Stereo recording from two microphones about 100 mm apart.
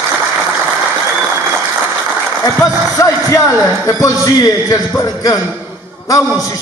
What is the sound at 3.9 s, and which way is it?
A man's voice, 25° left (ahead or behind).